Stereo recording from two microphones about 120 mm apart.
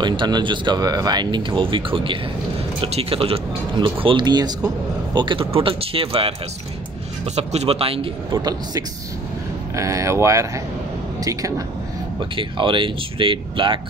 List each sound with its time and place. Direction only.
0.0 s a man's voice: 40° right (ahead or behind)
7.3 s speech: 60° right (ahead or behind)
8.3 s speech: 35° right (ahead or behind)
9.8 s speech: 25° right (ahead or behind)
12.2 s speech: 45° right (ahead or behind)